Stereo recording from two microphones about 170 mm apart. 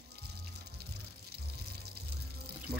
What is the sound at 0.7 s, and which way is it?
Music, 70° right (ahead or behind).